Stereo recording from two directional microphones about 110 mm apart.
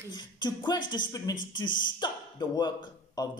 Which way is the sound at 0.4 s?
40° left (ahead or behind).